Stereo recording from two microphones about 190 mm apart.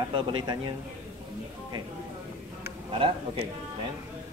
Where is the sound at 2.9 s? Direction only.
30° right (ahead or behind).